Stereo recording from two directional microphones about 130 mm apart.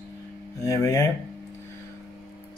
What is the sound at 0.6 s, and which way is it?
Speech, 25° left (ahead or behind).